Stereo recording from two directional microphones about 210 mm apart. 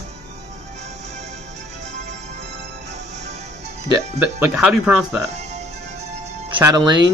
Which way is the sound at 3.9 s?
5° right (ahead or behind).